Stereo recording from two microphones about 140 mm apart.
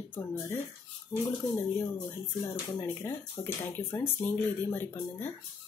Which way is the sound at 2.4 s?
15° left (ahead or behind).